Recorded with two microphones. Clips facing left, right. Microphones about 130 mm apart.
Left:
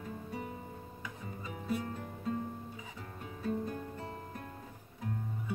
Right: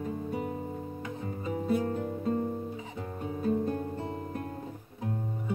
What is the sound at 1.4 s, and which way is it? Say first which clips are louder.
Music: right 8 dB; 35° right (ahead or behind).